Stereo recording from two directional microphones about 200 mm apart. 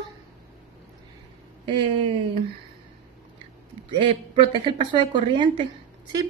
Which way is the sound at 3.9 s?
25° right (ahead or behind).